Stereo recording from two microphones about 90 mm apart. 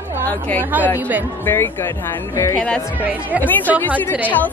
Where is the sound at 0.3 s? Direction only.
20° left (ahead or behind).